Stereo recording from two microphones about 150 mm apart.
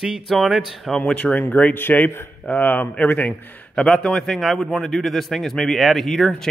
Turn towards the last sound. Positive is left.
turn(degrees=5)  # may be behind; listen again after turning